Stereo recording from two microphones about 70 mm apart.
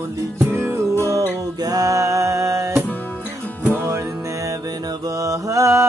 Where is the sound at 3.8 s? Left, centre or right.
Right.